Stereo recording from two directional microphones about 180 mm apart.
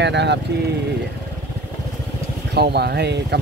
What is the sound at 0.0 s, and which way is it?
Speech, 75° right (ahead or behind).